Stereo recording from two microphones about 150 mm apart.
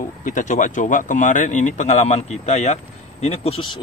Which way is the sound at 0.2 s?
60° left (ahead or behind).